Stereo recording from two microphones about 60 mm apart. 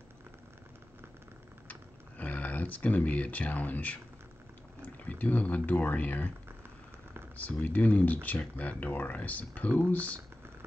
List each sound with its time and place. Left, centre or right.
1.7 s a sound: left
4.8 s speech: left
7.3 s speech: left